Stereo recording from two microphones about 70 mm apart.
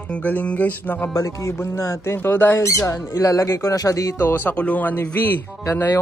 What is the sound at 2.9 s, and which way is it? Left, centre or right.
Speech, left.